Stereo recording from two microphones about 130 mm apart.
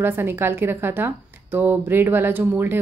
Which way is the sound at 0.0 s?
15° right (ahead or behind).